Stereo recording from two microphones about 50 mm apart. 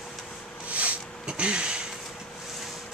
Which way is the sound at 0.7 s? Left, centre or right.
Right.